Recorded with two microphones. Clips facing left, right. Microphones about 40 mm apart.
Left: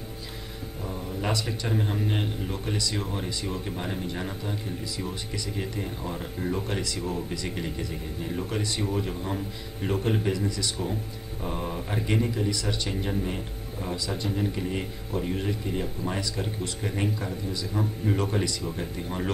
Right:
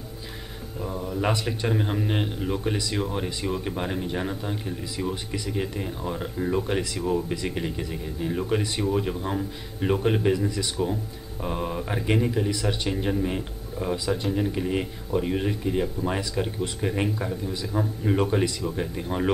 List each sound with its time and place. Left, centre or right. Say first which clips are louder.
0.8 s speech: right 4 dB; right
13.7 s speech: right 5 dB; centre